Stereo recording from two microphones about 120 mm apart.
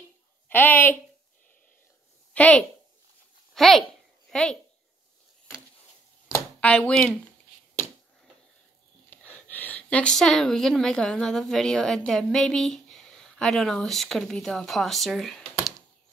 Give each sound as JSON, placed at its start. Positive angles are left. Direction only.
{"t": 0.5, "sound": "speech", "side_deg": 15}
{"t": 2.3, "sound": "a woman's voice", "side_deg": 10}
{"t": 6.6, "sound": "speech", "side_deg": 10}
{"t": 9.1, "sound": "speech", "side_deg": 15}